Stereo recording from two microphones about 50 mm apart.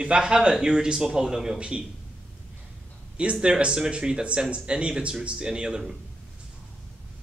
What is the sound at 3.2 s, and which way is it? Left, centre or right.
Speech, centre.